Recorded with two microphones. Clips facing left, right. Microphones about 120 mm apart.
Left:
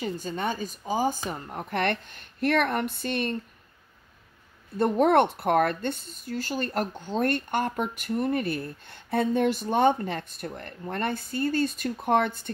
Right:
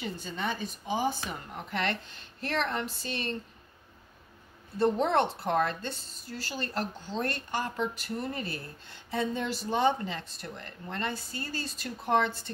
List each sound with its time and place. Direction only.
0.0 s a woman's voice: 40° left (ahead or behind)
4.7 s a woman's voice: 55° left (ahead or behind)